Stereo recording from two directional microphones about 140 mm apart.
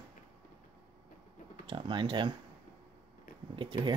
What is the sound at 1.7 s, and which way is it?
Speech, 35° right (ahead or behind).